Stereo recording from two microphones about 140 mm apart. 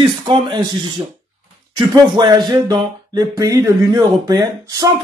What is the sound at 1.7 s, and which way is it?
A man's voice, 30° right (ahead or behind).